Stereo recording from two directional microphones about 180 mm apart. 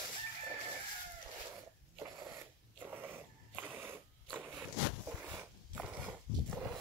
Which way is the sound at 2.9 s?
10° right (ahead or behind).